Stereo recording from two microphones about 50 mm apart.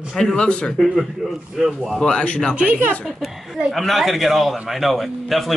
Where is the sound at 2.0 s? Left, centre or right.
Left.